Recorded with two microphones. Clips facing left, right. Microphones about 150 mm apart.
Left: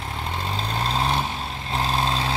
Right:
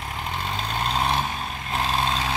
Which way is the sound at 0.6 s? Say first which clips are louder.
Even; 30° left (ahead or behind).